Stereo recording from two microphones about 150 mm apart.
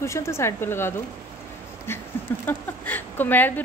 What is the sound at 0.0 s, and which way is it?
A woman's voice, 20° left (ahead or behind).